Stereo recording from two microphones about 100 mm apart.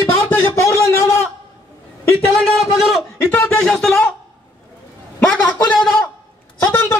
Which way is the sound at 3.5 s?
10° left (ahead or behind).